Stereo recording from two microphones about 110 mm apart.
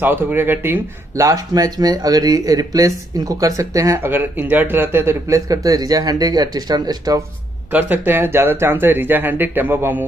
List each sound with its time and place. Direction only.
0.0 s speech: 20° right (ahead or behind); by 7.2 s 35° right (ahead or behind)
7.7 s speech: 15° right (ahead or behind)